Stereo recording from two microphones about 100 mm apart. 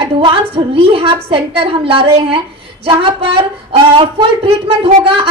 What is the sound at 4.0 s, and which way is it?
Speech, 65° right (ahead or behind).